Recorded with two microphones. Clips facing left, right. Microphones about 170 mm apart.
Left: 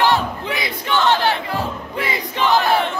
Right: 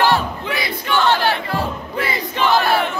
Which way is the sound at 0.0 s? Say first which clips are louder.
Even; 20° left (ahead or behind).